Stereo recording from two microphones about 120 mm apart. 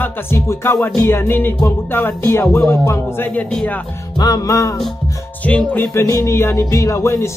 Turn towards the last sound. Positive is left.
turn(degrees=25)  # may be behind; listen again after turning